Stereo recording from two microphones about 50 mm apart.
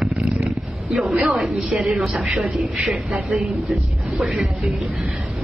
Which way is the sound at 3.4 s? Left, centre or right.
Right.